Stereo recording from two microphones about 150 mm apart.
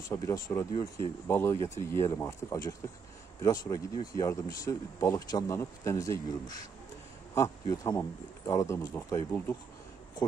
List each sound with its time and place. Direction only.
0.1 s speech: 20° left (ahead or behind)
7.3 s speech: 20° left (ahead or behind)